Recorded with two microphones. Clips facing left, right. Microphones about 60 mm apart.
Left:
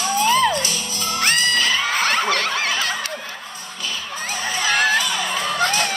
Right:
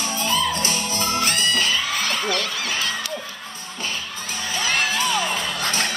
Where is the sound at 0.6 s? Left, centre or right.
Right.